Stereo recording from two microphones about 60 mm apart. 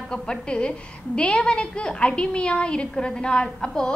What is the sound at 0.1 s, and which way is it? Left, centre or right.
A woman's voice, centre.